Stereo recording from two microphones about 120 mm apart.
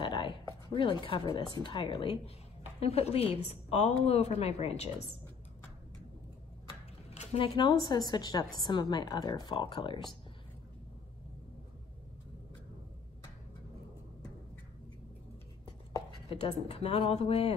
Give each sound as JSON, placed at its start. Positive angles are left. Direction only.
{"t": 0.0, "sound": "a sound", "side_deg": 45}
{"t": 0.7, "sound": "speech", "side_deg": 45}
{"t": 2.8, "sound": "speech", "side_deg": 60}
{"t": 7.1, "sound": "a sound", "side_deg": 55}
{"t": 7.9, "sound": "a woman's voice", "side_deg": 35}
{"t": 16.3, "sound": "speech", "side_deg": 55}